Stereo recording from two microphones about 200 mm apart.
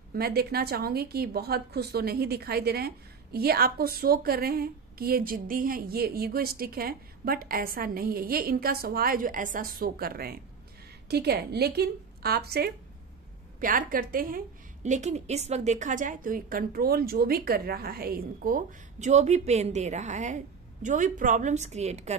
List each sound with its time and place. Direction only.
0.1 s a woman's voice: 50° right (ahead or behind); by 22.1 s 35° right (ahead or behind)